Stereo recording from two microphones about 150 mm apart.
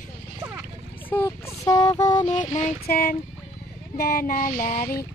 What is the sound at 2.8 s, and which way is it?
Child singing, 75° left (ahead or behind).